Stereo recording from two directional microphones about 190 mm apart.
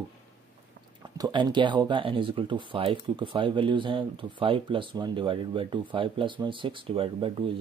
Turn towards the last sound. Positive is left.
turn(degrees=-30)  # may be behind; listen again after turning